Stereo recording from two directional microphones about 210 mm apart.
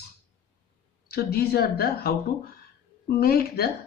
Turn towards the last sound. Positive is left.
turn(degrees=45)  # may be behind; listen again after turning